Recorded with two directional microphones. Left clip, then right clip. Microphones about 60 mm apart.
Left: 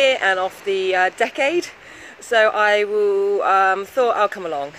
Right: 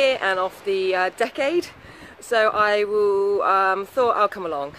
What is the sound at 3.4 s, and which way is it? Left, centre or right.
Speech, centre.